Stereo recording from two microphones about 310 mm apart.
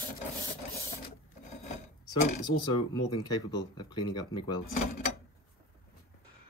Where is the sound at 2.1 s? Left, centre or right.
Left.